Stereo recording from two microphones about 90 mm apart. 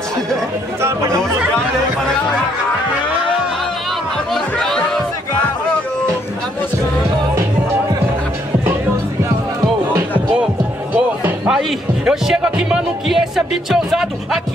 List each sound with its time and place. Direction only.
0.8 s speech: 35° right (ahead or behind)
4.3 s chatter: 5° left (ahead or behind)
11.0 s music: 10° right (ahead or behind)